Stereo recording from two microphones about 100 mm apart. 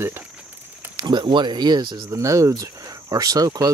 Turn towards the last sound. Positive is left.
turn(degrees=-40)  # may be behind; listen again after turning